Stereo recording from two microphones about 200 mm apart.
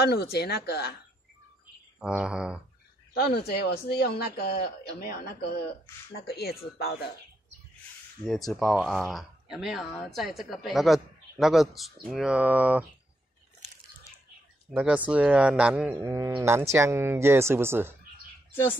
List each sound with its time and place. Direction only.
0.0 s speech: 55° left (ahead or behind)
2.0 s a woman's voice: 5° right (ahead or behind)
3.2 s speech: 55° left (ahead or behind)
8.5 s a woman's voice: centre (ahead or behind)
14.7 s a woman's voice: 5° right (ahead or behind)